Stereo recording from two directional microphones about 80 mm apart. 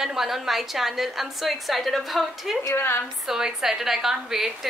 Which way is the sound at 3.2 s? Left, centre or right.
Centre.